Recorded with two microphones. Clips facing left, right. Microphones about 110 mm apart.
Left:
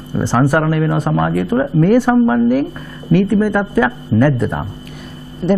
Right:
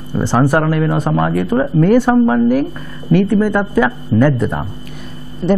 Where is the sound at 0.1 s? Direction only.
Centre (ahead or behind).